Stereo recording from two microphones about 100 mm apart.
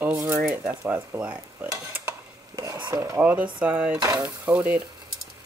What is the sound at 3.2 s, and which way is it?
Speech, 15° right (ahead or behind).